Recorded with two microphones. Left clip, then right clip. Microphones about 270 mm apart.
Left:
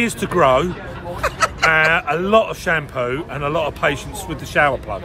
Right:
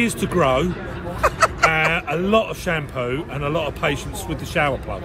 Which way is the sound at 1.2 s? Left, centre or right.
Centre.